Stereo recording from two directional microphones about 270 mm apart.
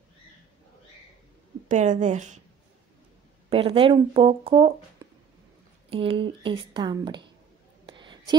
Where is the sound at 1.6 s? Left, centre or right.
Right.